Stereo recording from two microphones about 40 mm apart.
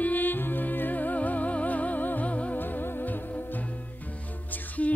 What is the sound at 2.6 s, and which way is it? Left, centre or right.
Music, left.